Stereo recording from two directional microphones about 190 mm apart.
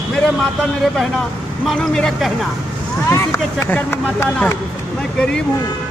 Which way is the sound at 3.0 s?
15° left (ahead or behind).